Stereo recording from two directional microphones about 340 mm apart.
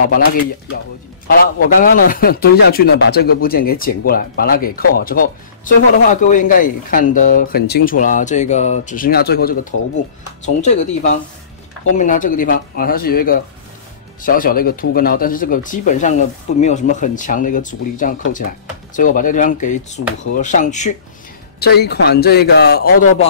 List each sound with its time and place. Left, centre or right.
1.2 s a man's voice: left